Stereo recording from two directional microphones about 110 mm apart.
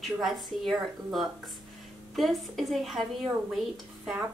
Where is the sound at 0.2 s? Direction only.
Centre (ahead or behind).